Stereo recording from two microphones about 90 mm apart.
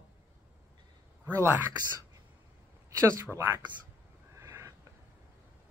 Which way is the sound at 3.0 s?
30° right (ahead or behind).